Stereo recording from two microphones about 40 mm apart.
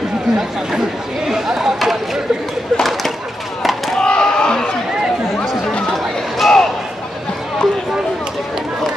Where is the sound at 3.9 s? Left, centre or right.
Centre.